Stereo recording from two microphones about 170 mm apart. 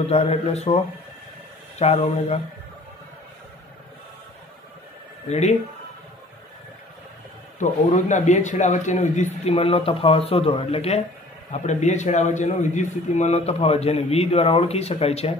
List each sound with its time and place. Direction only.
0.1 s a man's voice: 40° left (ahead or behind)
5.3 s a man's voice: 40° left (ahead or behind)
7.5 s a man's voice: 45° left (ahead or behind)